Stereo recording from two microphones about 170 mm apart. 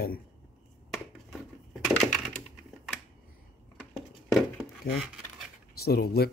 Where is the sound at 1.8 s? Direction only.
Centre (ahead or behind).